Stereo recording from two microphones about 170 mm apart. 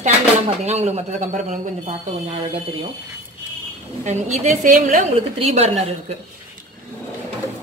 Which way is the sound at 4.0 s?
40° right (ahead or behind).